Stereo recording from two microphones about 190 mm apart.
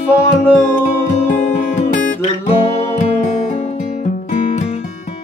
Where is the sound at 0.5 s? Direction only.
45° left (ahead or behind).